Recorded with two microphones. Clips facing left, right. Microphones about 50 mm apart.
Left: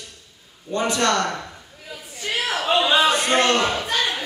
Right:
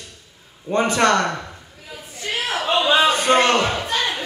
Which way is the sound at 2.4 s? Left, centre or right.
Centre.